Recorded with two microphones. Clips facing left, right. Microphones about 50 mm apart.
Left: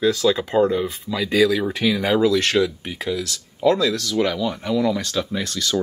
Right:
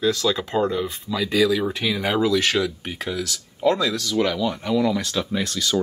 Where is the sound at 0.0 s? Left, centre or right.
Centre.